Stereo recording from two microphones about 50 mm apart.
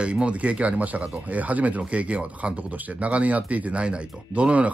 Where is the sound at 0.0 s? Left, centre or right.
Right.